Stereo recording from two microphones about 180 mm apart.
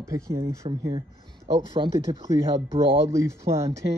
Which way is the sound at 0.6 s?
35° right (ahead or behind).